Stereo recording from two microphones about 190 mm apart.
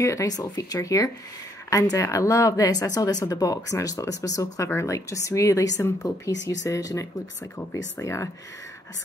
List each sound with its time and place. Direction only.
0.0 s speech: 15° left (ahead or behind)